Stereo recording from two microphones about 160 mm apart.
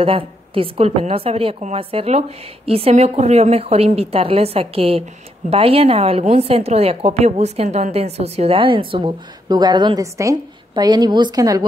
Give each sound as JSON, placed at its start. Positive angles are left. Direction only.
{"t": 0.0, "sound": "a woman's voice", "side_deg": -35}